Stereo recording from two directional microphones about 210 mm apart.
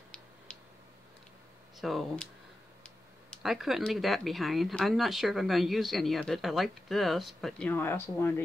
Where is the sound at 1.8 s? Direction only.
Centre (ahead or behind).